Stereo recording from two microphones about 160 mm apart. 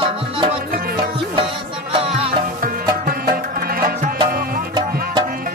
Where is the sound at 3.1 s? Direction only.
65° right (ahead or behind).